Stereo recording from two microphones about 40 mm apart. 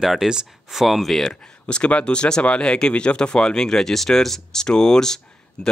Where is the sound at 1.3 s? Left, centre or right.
Left.